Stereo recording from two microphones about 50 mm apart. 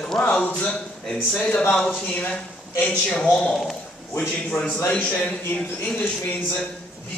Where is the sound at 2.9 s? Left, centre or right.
Centre.